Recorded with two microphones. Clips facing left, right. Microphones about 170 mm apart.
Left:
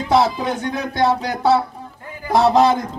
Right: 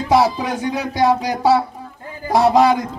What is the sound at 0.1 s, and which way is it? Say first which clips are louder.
Music: right 1 dB; 10° right (ahead or behind).